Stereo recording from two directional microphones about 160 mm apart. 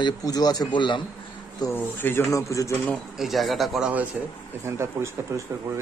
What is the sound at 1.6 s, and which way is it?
Speech, 15° left (ahead or behind).